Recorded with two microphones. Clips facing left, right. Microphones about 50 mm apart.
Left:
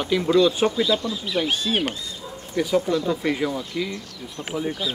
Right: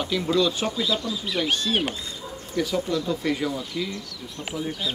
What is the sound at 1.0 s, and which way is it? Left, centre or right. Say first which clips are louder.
Speech: left 2 dB; left.